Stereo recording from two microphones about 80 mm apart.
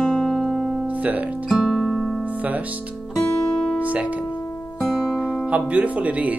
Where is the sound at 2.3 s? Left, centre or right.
Centre.